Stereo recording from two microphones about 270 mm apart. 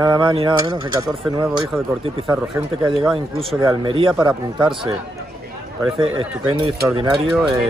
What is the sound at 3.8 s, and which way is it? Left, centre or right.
Speech, centre.